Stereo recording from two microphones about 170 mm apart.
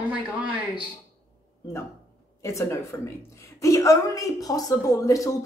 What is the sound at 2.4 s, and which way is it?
A woman's voice, 15° left (ahead or behind).